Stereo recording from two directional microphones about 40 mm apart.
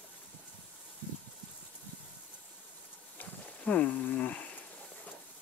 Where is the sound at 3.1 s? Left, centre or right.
Left.